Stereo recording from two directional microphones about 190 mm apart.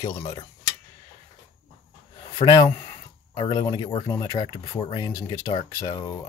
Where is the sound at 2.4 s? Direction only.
20° left (ahead or behind).